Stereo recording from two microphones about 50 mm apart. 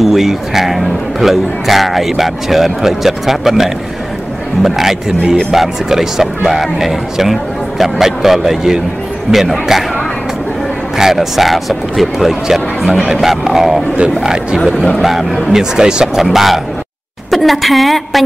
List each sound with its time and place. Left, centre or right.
0.0 s speech: centre
11.0 s speech: centre
14.2 s speech: centre
16.2 s speech: centre